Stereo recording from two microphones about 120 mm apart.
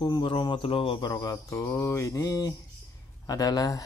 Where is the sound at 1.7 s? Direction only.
20° left (ahead or behind).